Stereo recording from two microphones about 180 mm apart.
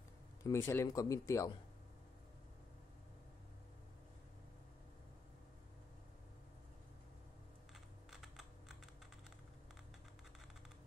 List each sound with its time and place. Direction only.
0.4 s speech: 15° left (ahead or behind)
8.1 s computer keyboard: centre (ahead or behind)